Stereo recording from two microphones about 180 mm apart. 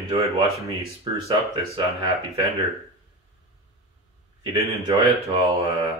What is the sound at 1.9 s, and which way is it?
Speech, 15° right (ahead or behind).